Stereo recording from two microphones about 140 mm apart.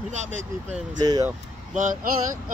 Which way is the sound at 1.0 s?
30° right (ahead or behind).